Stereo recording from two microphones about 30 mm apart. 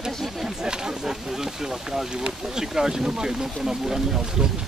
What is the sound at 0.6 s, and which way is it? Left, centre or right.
Speech, right.